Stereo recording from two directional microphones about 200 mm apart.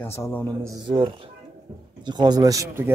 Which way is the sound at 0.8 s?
25° right (ahead or behind).